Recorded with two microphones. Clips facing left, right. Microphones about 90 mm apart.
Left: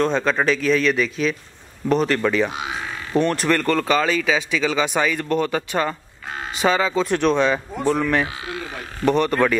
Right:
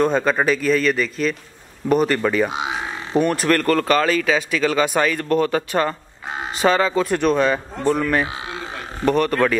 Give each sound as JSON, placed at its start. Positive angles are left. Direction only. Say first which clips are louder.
{"t": 0.0, "sound": "speech", "louder": "right 2 dB", "side_deg": -5}
{"t": 2.5, "sound": "speech", "louder": "right 3 dB", "side_deg": -20}
{"t": 3.2, "sound": "speech", "louder": "right 1 dB", "side_deg": -10}